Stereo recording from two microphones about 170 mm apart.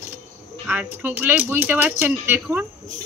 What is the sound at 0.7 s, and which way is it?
A woman's voice, 10° right (ahead or behind).